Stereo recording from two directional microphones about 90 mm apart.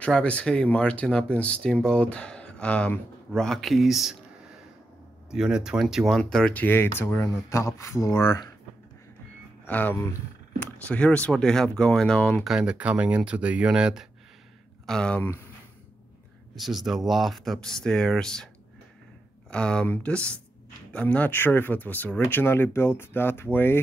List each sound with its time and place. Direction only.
0.0 s speech: 15° left (ahead or behind); by 4.2 s 5° right (ahead or behind)
5.3 s speech: 10° right (ahead or behind)
6.5 s speech: 20° left (ahead or behind)
9.7 s speech: 20° left (ahead or behind)
12.4 s speech: 10° right (ahead or behind)
14.9 s speech: 10° left (ahead or behind)
16.5 s speech: centre (ahead or behind)
19.5 s speech: 10° left (ahead or behind)